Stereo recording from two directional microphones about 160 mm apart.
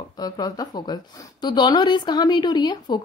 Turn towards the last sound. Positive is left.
turn(degrees=25)  # may be behind; listen again after turning